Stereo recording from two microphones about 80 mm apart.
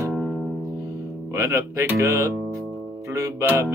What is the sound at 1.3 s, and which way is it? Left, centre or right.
Speech, right.